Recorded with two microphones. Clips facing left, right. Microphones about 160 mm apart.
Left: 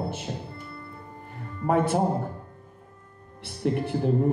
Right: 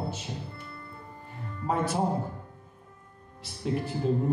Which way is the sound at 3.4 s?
60° left (ahead or behind).